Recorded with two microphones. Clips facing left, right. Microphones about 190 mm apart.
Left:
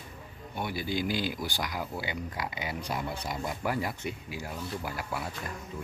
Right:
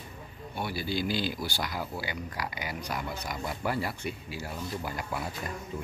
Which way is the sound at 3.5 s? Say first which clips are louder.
Right 1 dB; 10° left (ahead or behind).